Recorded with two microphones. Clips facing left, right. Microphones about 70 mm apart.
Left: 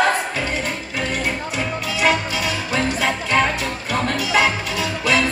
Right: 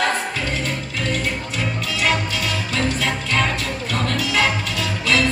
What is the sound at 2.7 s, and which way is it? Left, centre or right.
Music, left.